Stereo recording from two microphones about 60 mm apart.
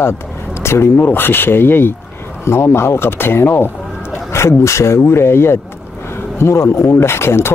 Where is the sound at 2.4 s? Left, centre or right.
Left.